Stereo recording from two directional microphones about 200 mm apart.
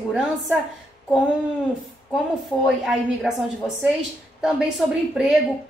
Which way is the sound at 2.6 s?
5° right (ahead or behind).